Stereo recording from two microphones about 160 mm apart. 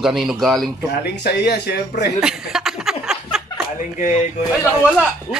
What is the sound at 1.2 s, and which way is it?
Speech, 90° left.